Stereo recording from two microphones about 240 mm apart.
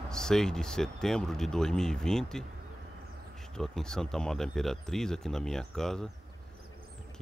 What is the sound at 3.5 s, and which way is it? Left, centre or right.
Speech, centre.